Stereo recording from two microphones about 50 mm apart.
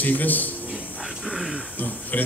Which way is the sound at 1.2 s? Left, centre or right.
Centre.